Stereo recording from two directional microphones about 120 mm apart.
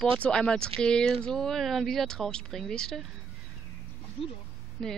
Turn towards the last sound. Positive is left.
turn(degrees=5)  # may be behind; listen again after turning